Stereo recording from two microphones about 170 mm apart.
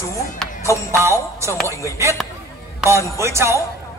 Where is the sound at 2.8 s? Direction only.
15° right (ahead or behind).